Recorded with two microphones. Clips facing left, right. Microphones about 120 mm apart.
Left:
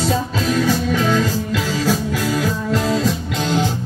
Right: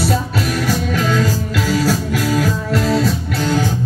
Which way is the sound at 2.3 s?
20° left (ahead or behind).